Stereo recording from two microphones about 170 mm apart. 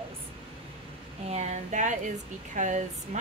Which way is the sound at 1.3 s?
45° right (ahead or behind).